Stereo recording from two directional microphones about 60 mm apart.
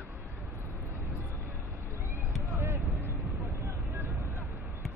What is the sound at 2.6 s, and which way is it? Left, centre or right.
Vehicle, right.